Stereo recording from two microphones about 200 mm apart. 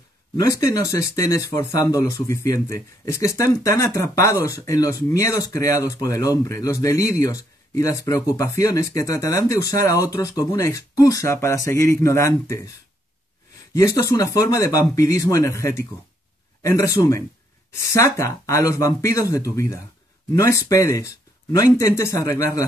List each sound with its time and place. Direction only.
0.4 s speech: 15° left (ahead or behind)
13.7 s speech: 15° left (ahead or behind)